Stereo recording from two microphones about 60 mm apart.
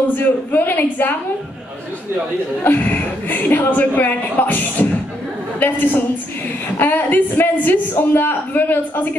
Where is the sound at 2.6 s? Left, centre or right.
Left.